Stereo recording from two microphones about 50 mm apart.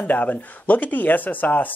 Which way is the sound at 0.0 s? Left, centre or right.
Left.